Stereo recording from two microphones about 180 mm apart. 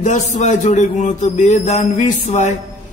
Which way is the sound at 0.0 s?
40° left (ahead or behind).